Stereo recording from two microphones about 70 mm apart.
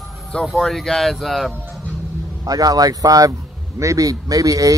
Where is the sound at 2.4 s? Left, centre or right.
Right.